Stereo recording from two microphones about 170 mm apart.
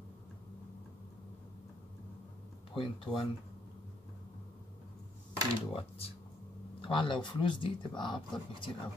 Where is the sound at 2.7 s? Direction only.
30° left (ahead or behind).